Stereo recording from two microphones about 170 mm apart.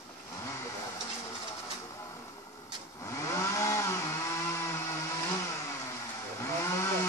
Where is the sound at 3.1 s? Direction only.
15° left (ahead or behind).